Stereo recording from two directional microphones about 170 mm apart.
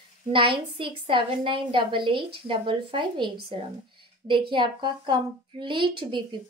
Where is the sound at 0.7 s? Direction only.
30° right (ahead or behind).